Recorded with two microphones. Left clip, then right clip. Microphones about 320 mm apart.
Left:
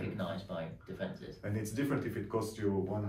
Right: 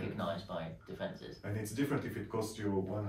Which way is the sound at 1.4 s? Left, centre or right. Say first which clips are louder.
Left 3 dB; centre.